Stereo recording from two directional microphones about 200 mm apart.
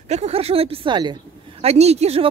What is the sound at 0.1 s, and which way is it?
Speech, 30° right (ahead or behind).